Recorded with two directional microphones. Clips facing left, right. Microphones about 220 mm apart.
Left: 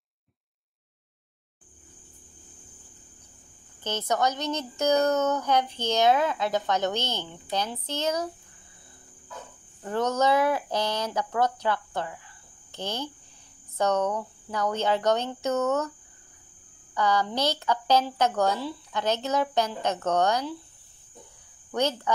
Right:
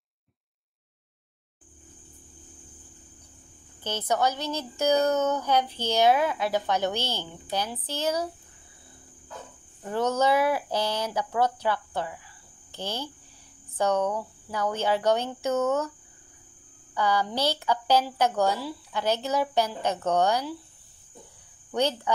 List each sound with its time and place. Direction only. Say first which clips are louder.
4.1 s speech: even; 10° right (ahead or behind)
9.8 s speech: even; 10° right (ahead or behind)
12.8 s speech: left 1 dB; 15° left (ahead or behind)
13.7 s speech: even; 10° right (ahead or behind)
16.9 s speech: left 1 dB; 10° right (ahead or behind)
21.7 s speech: even; 15° right (ahead or behind)